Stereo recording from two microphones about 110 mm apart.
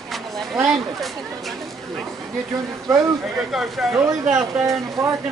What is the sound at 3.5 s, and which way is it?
Speech, 5° right (ahead or behind).